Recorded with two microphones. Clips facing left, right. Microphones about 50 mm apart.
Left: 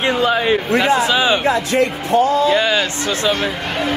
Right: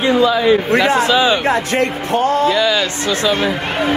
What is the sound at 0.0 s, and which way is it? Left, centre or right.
Speech, left.